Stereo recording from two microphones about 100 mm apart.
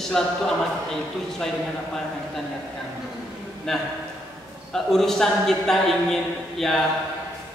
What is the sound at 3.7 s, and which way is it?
A man's voice, 5° left (ahead or behind).